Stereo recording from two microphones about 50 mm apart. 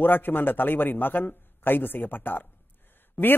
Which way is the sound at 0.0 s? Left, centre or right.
Left.